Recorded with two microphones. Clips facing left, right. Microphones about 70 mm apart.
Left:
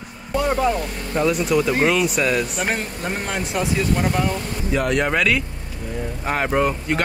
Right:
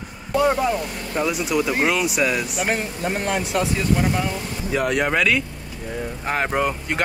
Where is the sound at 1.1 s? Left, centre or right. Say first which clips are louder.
Left 3 dB; centre.